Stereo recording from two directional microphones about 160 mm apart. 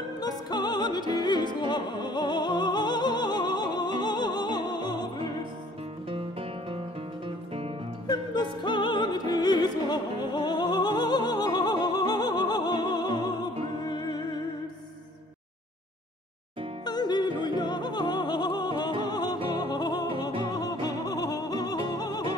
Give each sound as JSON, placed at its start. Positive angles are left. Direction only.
{"t": 0.2, "sound": "music", "side_deg": 25}
{"t": 7.2, "sound": "music", "side_deg": -35}
{"t": 8.6, "sound": "opera", "side_deg": 30}
{"t": 13.8, "sound": "music", "side_deg": 25}
{"t": 16.8, "sound": "music", "side_deg": 25}